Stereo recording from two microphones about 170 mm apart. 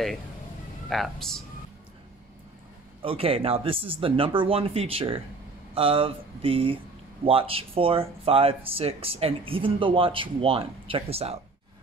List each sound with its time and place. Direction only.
0.8 s speech: centre (ahead or behind)
3.0 s speech: 35° right (ahead or behind)